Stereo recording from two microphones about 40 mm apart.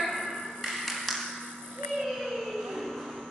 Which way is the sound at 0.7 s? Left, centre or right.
Centre.